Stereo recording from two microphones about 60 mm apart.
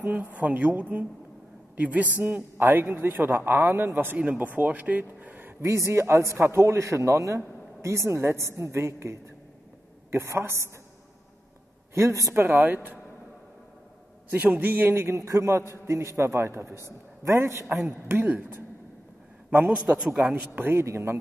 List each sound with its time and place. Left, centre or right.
0.1 s speech: right
2.5 s a man's voice: right
4.2 s speech: right
5.0 s a sound: right
5.6 s a woman's voice: right
11.9 s a woman's voice: right
12.4 s a man's voice: right
14.6 s a woman's voice: right
16.3 s a woman's voice: right
18.0 s a man's voice: right
19.7 s a man's voice: centre
20.5 s a man's voice: right
20.8 s a woman's voice: right